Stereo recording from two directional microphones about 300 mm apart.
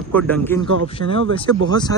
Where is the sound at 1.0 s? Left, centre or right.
Right.